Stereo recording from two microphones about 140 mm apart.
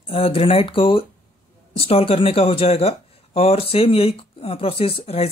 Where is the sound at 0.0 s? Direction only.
40° left (ahead or behind).